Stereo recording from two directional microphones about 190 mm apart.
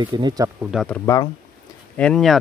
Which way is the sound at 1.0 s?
20° left (ahead or behind).